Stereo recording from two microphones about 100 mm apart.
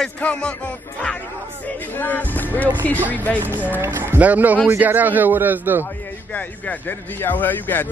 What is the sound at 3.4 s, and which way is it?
A man's voice, 20° right (ahead or behind).